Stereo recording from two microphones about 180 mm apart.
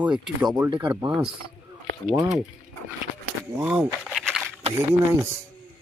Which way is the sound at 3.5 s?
15° right (ahead or behind).